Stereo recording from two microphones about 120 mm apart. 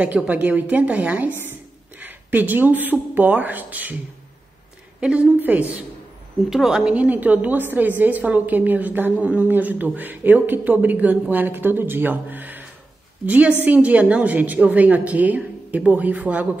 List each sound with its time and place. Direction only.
0.0 s a woman's voice: 15° right (ahead or behind)
5.0 s a woman's voice: 10° right (ahead or behind)